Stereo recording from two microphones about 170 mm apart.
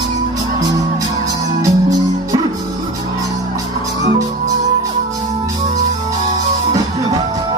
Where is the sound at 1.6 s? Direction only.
20° right (ahead or behind).